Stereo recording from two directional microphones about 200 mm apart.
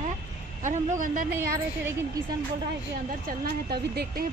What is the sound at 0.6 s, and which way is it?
Speech, 35° right (ahead or behind).